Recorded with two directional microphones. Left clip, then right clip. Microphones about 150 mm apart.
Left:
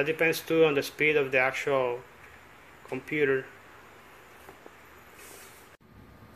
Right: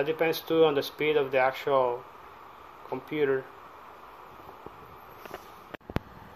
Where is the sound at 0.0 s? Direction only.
35° right (ahead or behind).